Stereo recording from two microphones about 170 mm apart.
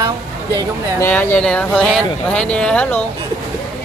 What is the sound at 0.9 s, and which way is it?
Speech, 15° left (ahead or behind).